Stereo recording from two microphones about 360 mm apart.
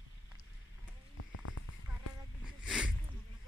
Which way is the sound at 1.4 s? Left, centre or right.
Left.